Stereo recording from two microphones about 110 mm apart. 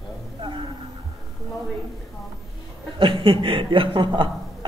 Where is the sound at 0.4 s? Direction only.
50° right (ahead or behind).